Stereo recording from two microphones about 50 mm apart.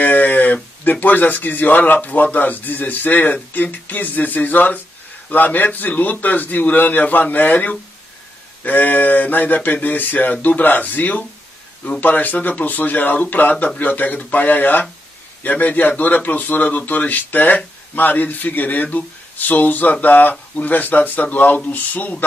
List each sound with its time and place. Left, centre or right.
0.0 s speech: left